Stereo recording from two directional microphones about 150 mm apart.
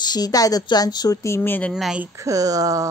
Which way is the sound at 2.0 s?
20° right (ahead or behind).